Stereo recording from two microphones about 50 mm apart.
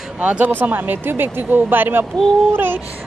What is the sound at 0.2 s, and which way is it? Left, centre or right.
Speech, right.